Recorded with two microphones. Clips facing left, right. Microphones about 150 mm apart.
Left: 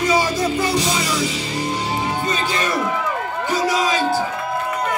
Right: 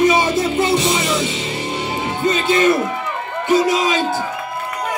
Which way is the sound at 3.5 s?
25° right (ahead or behind).